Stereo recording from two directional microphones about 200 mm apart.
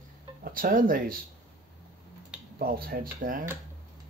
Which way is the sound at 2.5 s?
50° right (ahead or behind).